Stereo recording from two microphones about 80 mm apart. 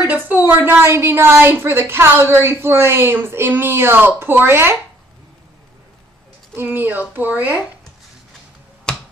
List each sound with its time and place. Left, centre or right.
0.0 s a woman's voice: centre
6.5 s a woman's voice: right
8.9 s a sound: centre